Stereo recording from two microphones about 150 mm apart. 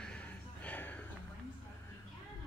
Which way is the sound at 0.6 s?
10° left (ahead or behind).